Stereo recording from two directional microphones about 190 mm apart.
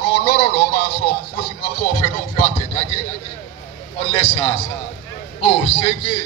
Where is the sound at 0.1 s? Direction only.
55° left (ahead or behind).